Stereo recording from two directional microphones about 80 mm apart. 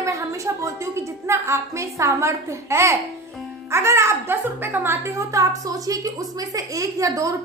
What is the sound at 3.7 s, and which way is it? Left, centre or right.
A woman's voice, right.